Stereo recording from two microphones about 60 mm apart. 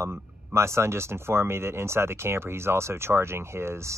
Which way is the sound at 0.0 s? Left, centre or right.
Right.